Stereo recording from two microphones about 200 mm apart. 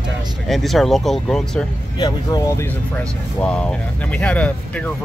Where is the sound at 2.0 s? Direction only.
20° left (ahead or behind).